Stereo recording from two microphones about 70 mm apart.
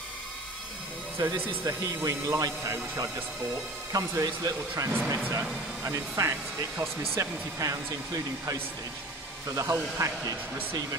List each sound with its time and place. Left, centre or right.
1.1 s speech: right
2.0 s speech: right
4.9 s speech: right
5.9 s speech: right
9.6 s speech: right